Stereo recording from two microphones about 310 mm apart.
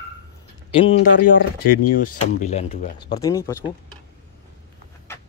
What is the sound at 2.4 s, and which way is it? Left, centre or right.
Speech, left.